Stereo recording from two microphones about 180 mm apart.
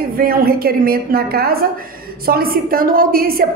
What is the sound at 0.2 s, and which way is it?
A woman's voice, 55° right (ahead or behind).